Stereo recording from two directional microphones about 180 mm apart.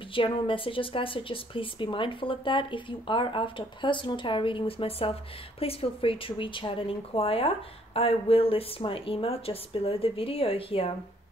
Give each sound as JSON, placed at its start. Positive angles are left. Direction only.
{"t": 0.1, "sound": "a woman's voice", "side_deg": 30}